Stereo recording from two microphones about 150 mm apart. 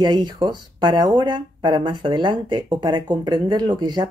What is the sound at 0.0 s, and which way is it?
Speech, 30° right (ahead or behind).